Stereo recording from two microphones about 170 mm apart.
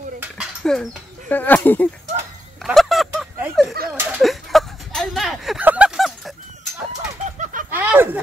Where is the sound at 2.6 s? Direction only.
Centre (ahead or behind).